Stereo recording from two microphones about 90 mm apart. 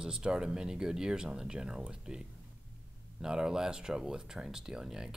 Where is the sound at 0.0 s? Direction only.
10° right (ahead or behind).